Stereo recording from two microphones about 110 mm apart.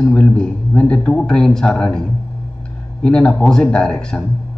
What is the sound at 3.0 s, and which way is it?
A man's voice, 5° left (ahead or behind).